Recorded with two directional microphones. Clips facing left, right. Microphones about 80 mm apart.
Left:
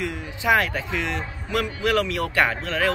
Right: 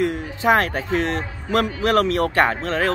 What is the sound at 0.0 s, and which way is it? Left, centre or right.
A man's voice, right.